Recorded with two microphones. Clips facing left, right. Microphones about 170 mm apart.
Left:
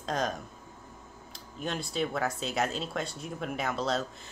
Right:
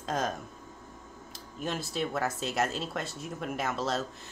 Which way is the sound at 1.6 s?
Centre (ahead or behind).